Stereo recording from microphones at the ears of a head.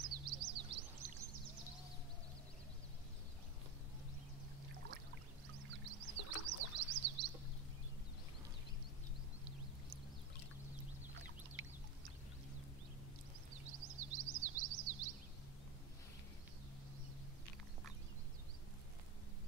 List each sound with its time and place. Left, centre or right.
0.0 s bird: right
5.7 s music: right
13.5 s bird vocalization: right